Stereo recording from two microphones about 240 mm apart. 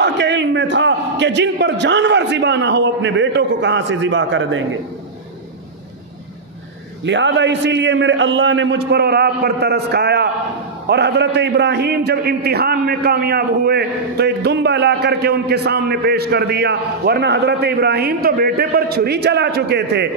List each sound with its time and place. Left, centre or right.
0.0 s a man's voice: right
7.1 s a man's voice: right